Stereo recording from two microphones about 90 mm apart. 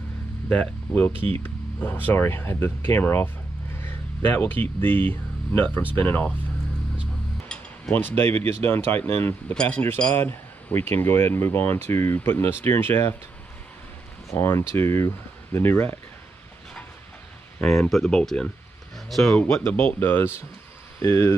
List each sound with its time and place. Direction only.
0.5 s speech: 15° left (ahead or behind)
1.1 s speech: 90° right
1.4 s speech: 20° left (ahead or behind)
7.4 s a sound: 10° left (ahead or behind)
7.9 s speech: 25° left (ahead or behind)
8.2 s speech: 90° right
8.6 s speech: 25° left (ahead or behind)
14.3 s speech: 25° left (ahead or behind)
17.6 s speech: 5° left (ahead or behind)
19.3 s speech: 25° left (ahead or behind)